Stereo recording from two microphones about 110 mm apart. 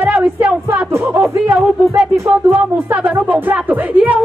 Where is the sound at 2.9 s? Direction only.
15° right (ahead or behind).